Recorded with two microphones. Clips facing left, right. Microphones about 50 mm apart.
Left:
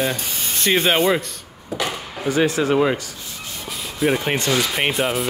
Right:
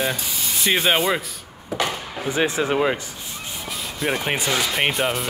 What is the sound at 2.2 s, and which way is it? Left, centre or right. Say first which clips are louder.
Speech: left 3 dB; right.